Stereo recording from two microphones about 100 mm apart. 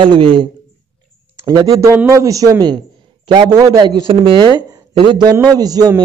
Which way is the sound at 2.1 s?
35° right (ahead or behind).